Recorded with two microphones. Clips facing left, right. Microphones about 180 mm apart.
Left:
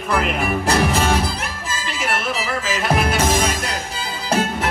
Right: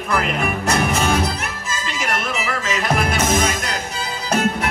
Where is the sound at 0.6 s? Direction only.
30° left (ahead or behind).